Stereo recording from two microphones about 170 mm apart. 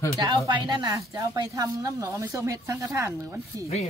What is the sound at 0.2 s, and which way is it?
A woman's voice, 25° right (ahead or behind).